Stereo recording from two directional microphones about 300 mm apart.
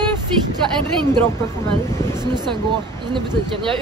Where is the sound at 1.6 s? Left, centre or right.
Centre.